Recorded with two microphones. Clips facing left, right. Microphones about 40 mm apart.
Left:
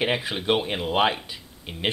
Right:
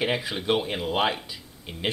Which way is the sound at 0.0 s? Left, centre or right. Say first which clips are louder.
Left 2 dB; centre.